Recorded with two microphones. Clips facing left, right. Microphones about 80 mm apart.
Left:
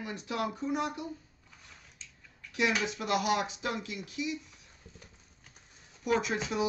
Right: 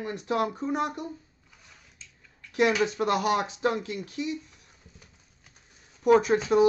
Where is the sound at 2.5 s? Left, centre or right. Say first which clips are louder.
Right 7 dB; right.